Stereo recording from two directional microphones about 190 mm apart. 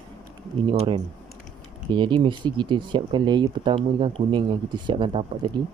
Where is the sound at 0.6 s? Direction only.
30° right (ahead or behind).